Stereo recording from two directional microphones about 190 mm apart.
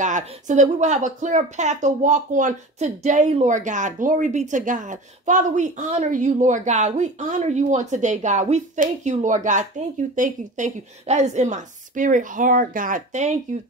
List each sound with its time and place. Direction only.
0.0 s a woman's voice: 40° right (ahead or behind)